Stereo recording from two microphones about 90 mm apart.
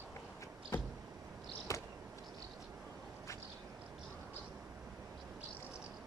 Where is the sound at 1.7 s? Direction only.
35° left (ahead or behind).